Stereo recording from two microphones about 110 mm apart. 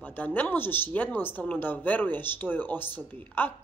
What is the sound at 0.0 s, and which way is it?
A woman's voice, 15° left (ahead or behind).